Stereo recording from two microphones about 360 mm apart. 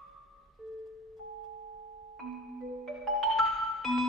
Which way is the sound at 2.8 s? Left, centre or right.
Centre.